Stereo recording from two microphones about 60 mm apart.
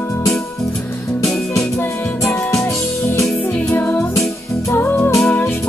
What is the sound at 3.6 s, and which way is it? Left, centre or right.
Music, left.